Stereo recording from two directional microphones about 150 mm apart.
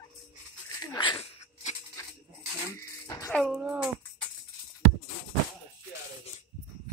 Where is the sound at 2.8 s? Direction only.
20° left (ahead or behind).